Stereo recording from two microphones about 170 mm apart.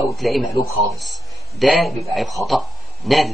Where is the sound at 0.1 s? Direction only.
Centre (ahead or behind).